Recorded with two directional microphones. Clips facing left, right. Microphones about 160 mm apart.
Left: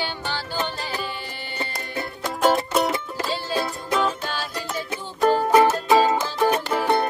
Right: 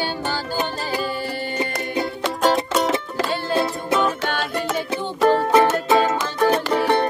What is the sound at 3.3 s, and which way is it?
Music, 55° right (ahead or behind).